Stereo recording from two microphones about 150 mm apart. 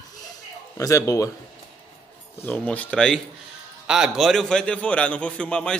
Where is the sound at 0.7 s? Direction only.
20° left (ahead or behind).